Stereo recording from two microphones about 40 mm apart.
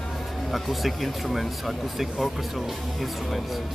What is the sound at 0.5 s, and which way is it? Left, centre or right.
Speech, centre.